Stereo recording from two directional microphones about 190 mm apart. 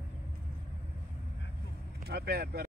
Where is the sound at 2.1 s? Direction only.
55° right (ahead or behind).